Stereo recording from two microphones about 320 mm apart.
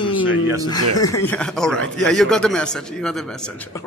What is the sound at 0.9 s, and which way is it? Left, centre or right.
Speech, centre.